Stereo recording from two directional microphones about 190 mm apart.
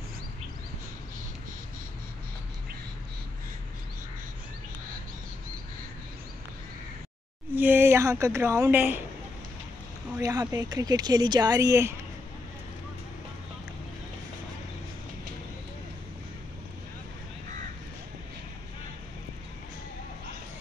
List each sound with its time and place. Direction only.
7.5 s a woman's voice: 10° right (ahead or behind)
10.1 s speech: 20° right (ahead or behind)